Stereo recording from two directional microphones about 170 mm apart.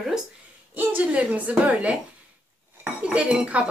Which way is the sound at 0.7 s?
10° right (ahead or behind).